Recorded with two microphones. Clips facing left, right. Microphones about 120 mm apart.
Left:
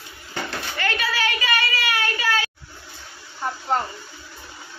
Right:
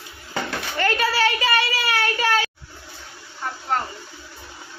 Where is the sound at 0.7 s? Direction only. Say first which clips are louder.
Right 5 dB; 40° right (ahead or behind).